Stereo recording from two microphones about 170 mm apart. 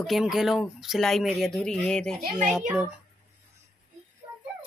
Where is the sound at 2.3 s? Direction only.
5° right (ahead or behind).